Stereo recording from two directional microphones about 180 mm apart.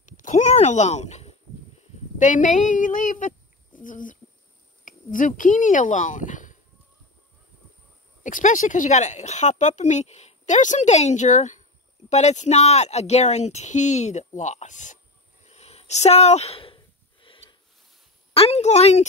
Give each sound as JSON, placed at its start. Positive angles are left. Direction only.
{"t": 0.2, "sound": "speech", "side_deg": 40}
{"t": 8.2, "sound": "a woman's voice", "side_deg": 45}
{"t": 15.4, "sound": "a sound", "side_deg": 35}
{"t": 18.3, "sound": "a woman's voice", "side_deg": 35}